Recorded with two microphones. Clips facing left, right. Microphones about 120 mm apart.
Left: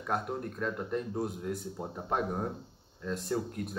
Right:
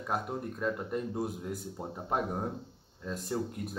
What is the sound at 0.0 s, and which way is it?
A man's voice, 5° right (ahead or behind).